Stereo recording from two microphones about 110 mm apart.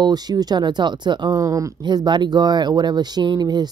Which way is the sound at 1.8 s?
40° right (ahead or behind).